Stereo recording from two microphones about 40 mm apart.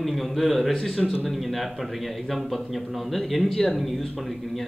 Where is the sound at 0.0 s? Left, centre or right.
Centre.